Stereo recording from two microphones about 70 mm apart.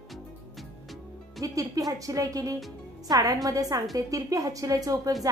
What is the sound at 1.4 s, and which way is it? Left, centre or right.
A woman's voice, right.